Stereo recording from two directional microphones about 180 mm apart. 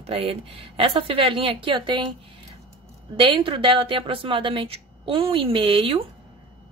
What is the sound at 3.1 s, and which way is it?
A woman's voice, 30° right (ahead or behind).